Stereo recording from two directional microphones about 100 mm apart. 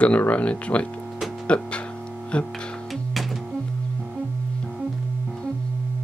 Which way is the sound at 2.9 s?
Centre (ahead or behind).